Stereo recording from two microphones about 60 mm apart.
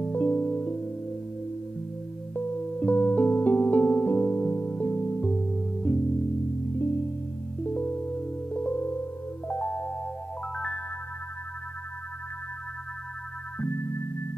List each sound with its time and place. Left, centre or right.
0.0 s music: left
2.3 s music: left
6.8 s music: left
7.6 s music: left
10.5 s music: centre
13.6 s music: left